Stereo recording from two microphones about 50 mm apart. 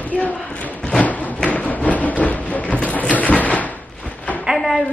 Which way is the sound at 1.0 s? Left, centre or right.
Left.